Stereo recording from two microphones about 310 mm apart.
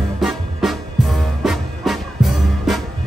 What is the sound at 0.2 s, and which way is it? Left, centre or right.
Music, centre.